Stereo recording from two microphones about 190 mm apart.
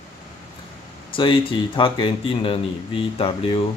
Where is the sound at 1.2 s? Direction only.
25° left (ahead or behind).